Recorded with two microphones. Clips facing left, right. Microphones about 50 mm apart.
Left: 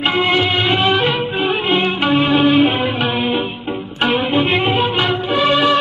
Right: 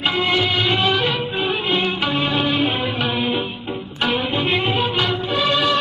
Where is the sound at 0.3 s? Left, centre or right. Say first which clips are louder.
Left 3 dB; centre.